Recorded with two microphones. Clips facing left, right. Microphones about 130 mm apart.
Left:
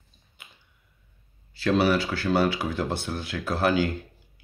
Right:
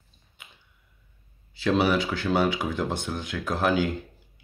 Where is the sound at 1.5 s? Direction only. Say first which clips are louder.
Left 1 dB; centre (ahead or behind).